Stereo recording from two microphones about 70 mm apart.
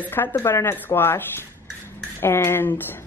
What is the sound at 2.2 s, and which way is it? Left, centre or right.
Speech, left.